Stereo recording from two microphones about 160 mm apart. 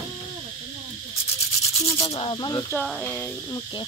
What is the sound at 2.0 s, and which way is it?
Speech, 35° left (ahead or behind).